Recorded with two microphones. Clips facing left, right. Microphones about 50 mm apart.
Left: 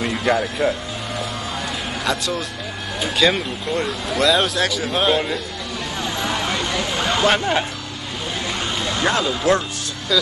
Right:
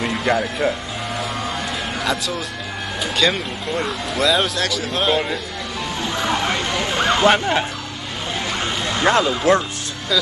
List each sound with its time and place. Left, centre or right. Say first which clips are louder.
0.0 s speech: even; centre
2.0 s speech: left 2 dB; centre
6.1 s speech: right 3 dB; right
8.5 s music: right 1 dB; right